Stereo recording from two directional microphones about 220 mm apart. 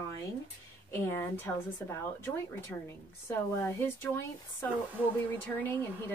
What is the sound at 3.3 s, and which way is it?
Speech, 10° left (ahead or behind).